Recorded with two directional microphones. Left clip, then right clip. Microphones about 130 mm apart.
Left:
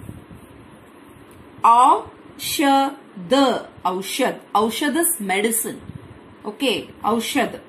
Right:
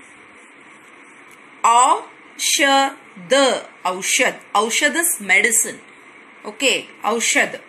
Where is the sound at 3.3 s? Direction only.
30° right (ahead or behind).